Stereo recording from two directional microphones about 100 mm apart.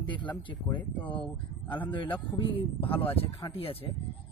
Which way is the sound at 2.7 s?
70° left (ahead or behind).